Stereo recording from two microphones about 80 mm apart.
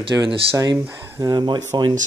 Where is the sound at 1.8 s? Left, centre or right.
Right.